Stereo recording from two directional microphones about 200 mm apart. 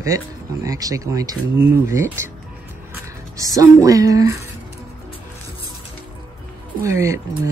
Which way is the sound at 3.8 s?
15° right (ahead or behind).